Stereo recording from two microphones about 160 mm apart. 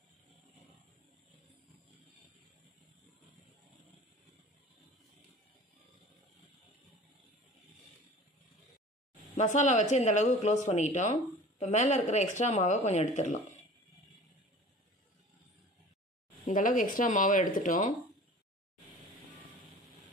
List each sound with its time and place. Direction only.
9.4 s speech: 50° left (ahead or behind)
16.4 s speech: 55° left (ahead or behind)